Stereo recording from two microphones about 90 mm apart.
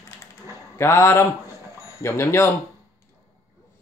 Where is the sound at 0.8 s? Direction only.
30° left (ahead or behind).